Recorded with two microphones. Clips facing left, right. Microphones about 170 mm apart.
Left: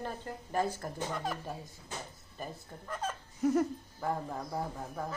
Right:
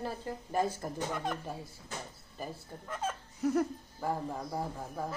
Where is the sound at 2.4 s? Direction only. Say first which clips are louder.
Right 1 dB; 5° right (ahead or behind).